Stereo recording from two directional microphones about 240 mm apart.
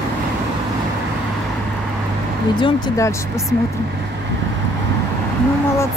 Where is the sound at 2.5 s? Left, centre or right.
Centre.